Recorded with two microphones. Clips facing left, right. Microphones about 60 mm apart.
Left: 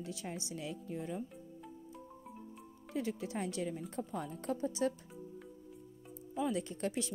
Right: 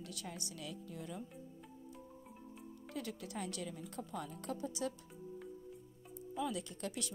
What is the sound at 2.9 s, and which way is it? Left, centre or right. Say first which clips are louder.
A woman's voice: left 6 dB; left.